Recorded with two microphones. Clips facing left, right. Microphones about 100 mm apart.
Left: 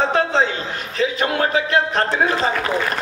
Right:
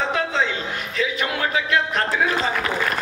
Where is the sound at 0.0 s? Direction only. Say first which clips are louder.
Left 5 dB; 35° left (ahead or behind).